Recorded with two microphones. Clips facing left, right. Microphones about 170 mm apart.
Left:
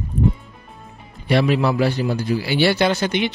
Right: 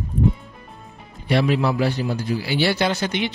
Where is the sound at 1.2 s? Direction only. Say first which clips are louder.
Left 2 dB; 70° left (ahead or behind).